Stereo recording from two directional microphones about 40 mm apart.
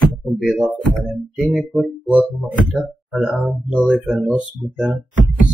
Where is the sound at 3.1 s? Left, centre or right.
Centre.